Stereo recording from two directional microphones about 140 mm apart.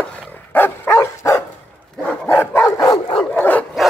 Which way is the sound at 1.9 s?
5° left (ahead or behind).